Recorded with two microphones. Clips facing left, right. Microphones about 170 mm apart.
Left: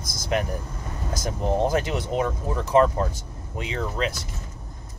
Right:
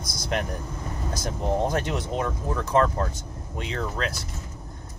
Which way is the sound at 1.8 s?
Centre (ahead or behind).